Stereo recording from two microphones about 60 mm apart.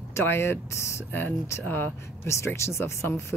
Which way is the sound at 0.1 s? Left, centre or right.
Left.